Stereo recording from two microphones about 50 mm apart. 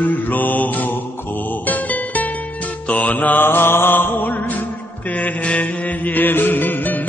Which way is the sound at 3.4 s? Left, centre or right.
Left.